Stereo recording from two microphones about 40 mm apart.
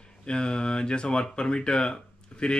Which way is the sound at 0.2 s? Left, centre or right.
Left.